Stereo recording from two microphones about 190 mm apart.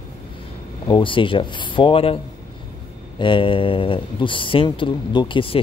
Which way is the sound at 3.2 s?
25° left (ahead or behind).